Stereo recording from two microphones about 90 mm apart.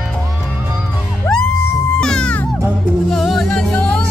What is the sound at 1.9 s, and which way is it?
Music, 10° left (ahead or behind).